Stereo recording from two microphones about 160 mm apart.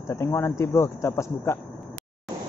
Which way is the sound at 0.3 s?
15° left (ahead or behind).